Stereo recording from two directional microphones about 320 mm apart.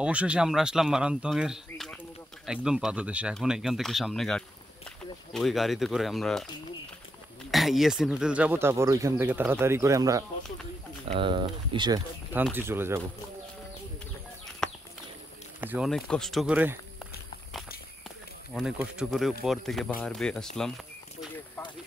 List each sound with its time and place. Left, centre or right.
0.0 s speech: centre
7.5 s speech: centre
14.6 s clip-clop: centre
15.6 s speech: centre
18.5 s speech: centre
20.0 s a sound: centre